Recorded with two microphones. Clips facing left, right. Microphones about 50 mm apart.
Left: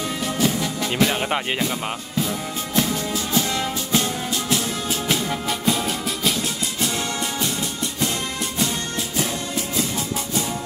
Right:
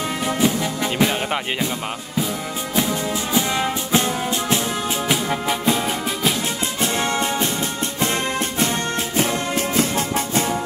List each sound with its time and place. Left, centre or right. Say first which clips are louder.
0.2 s music: right 2 dB; right
1.1 s speech: even; centre
2.1 s music: right 2 dB; centre
6.8 s music: right 5 dB; right